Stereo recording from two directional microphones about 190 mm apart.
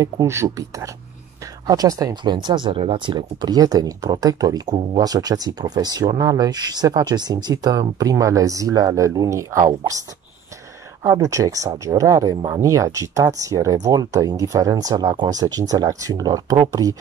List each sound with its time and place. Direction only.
0.0 s speech: 15° right (ahead or behind)